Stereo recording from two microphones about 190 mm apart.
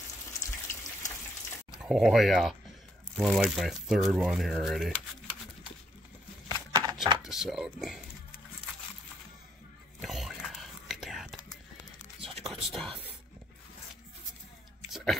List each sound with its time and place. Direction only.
1.7 s speech: centre (ahead or behind)
6.5 s a sound: 20° right (ahead or behind)
7.2 s speech: centre (ahead or behind)
10.0 s whispering: centre (ahead or behind)
12.4 s whispering: centre (ahead or behind)
14.9 s a sound: centre (ahead or behind)